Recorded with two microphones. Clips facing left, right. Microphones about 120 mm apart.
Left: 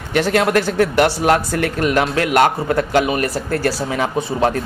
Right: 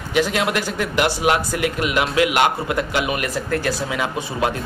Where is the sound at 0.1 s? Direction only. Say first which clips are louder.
Left 4 dB; 50° left (ahead or behind).